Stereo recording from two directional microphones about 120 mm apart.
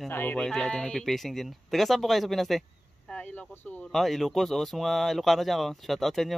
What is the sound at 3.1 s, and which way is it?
Speech, 15° left (ahead or behind).